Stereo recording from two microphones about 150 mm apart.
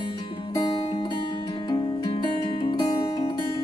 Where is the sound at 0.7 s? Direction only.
40° left (ahead or behind).